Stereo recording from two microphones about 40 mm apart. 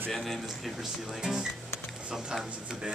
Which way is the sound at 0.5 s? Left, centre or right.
Centre.